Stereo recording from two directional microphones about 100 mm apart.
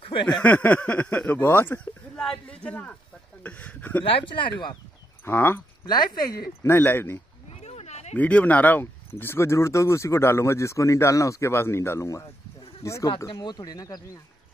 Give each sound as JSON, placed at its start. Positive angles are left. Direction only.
{"t": 0.0, "sound": "a sound", "side_deg": 55}
{"t": 0.4, "sound": "speech", "side_deg": 15}
{"t": 2.1, "sound": "a man's voice", "side_deg": 10}
{"t": 4.0, "sound": "speech", "side_deg": 60}
{"t": 5.2, "sound": "speech", "side_deg": 25}
{"t": 5.9, "sound": "speech", "side_deg": 45}
{"t": 6.6, "sound": "speech", "side_deg": 20}
{"t": 7.4, "sound": "a sound", "side_deg": 90}
{"t": 8.1, "sound": "speech", "side_deg": 15}
{"t": 13.3, "sound": "speech", "side_deg": 50}